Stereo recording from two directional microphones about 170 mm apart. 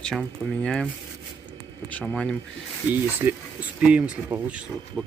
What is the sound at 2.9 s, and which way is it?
Speech, 15° right (ahead or behind).